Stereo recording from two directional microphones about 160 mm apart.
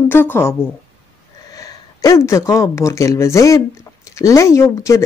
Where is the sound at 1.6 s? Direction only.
20° left (ahead or behind).